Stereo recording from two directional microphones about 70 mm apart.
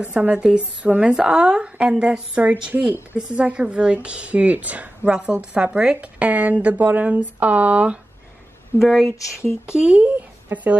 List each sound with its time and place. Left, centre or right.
0.0 s a woman's voice: centre
8.7 s speech: centre
9.4 s speech: left
9.8 s speech: centre